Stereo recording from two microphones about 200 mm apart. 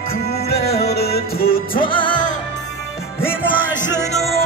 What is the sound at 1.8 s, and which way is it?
Music, 25° left (ahead or behind).